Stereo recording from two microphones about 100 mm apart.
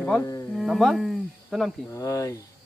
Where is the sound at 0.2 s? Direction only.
30° left (ahead or behind).